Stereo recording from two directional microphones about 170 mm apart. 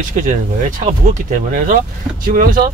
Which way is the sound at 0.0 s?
50° right (ahead or behind).